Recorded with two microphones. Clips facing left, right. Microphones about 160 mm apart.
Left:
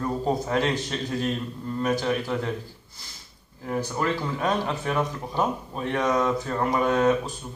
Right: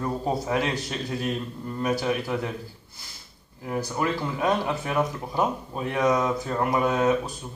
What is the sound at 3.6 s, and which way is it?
Speech, 5° right (ahead or behind).